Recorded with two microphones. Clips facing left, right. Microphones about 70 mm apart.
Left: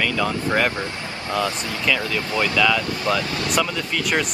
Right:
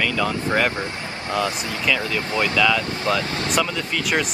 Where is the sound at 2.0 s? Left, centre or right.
Right.